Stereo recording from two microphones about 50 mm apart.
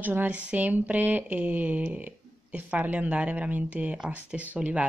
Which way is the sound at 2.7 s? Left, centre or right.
Right.